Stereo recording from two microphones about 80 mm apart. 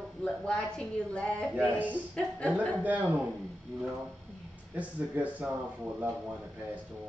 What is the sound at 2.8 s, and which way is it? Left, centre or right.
Speech, centre.